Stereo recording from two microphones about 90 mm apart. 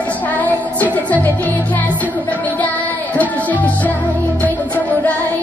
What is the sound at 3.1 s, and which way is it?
Music, 15° left (ahead or behind).